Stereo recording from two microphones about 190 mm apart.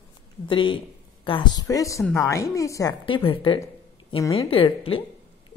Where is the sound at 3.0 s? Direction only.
25° left (ahead or behind).